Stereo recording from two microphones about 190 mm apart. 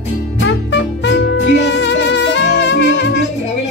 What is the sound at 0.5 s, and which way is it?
Music, 70° left (ahead or behind).